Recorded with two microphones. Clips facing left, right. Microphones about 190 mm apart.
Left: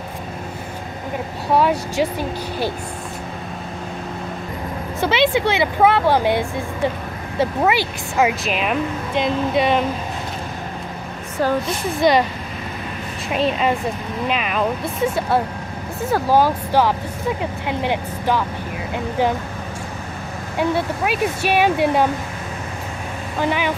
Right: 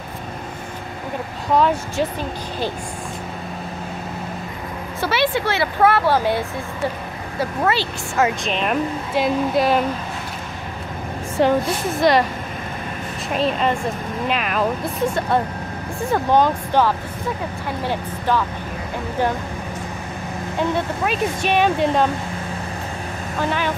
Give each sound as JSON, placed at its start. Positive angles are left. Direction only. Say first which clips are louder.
{"t": 1.5, "sound": "speech", "louder": "even", "side_deg": 10}
{"t": 5.0, "sound": "speech", "louder": "left 3 dB", "side_deg": 20}
{"t": 7.6, "sound": "speech", "louder": "left 2 dB", "side_deg": 15}
{"t": 11.4, "sound": "a woman's voice", "louder": "right 3 dB", "side_deg": -25}
{"t": 11.9, "sound": "speech", "louder": "left 1 dB", "side_deg": 0}
{"t": 13.3, "sound": "speech", "louder": "left 1 dB", "side_deg": 0}
{"t": 20.5, "sound": "speech", "louder": "left 2 dB", "side_deg": 10}
{"t": 23.4, "sound": "speech", "louder": "left 2 dB", "side_deg": 15}